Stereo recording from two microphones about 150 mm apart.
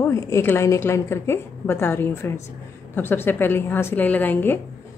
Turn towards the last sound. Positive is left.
turn(degrees=15)  # may be behind; listen again after turning